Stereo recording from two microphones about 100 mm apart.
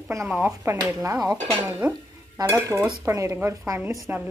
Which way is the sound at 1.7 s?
20° right (ahead or behind).